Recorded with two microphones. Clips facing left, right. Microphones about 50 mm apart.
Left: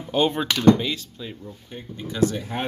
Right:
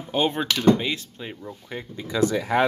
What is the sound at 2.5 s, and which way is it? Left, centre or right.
Speech, right.